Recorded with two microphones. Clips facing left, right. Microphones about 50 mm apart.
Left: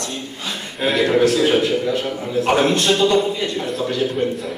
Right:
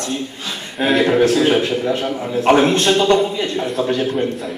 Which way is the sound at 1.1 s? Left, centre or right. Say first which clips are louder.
Left 1 dB; right.